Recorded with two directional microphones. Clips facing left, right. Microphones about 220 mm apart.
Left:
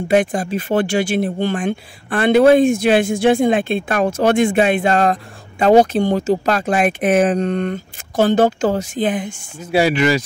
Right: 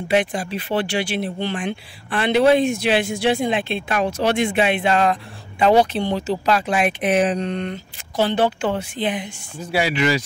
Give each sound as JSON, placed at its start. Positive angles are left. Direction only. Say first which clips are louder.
{"t": 0.1, "sound": "speech", "louder": "left 4 dB", "side_deg": 50}